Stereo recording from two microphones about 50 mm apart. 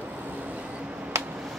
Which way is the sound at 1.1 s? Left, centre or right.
Right.